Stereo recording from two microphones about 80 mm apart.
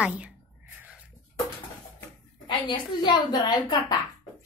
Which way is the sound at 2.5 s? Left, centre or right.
Left.